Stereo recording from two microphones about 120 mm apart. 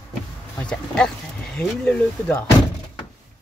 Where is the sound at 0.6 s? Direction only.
5° left (ahead or behind).